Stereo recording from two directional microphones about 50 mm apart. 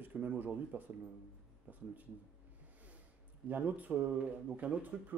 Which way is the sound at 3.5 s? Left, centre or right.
Right.